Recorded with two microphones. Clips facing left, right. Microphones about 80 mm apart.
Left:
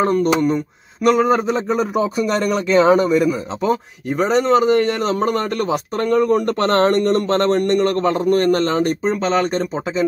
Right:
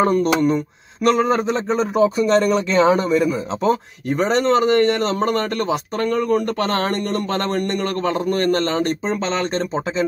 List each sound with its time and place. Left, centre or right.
0.0 s a man's voice: centre
8.1 s a man's voice: left
9.0 s a man's voice: centre